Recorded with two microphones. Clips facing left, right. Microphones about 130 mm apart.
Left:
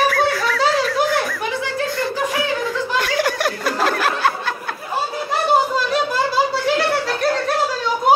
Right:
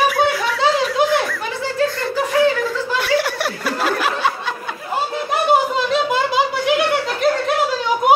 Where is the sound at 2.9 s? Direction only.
5° right (ahead or behind).